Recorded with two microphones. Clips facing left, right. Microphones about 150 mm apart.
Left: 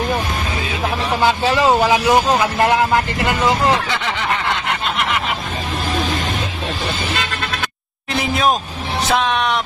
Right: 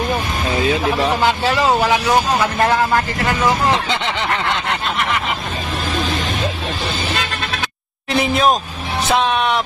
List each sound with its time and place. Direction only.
1.9 s speech: 15° left (ahead or behind)
3.9 s snicker: 20° right (ahead or behind)
8.1 s speech: centre (ahead or behind)